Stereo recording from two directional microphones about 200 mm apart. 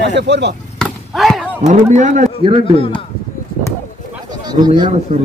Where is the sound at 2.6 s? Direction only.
25° left (ahead or behind).